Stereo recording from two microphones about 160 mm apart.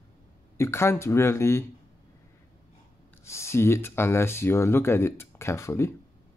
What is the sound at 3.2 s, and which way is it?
Speech, 15° left (ahead or behind).